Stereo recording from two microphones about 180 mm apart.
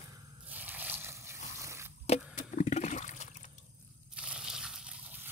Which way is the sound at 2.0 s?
40° left (ahead or behind).